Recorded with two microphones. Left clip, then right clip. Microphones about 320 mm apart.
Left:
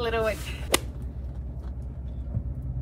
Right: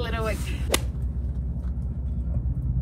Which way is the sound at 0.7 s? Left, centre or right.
Centre.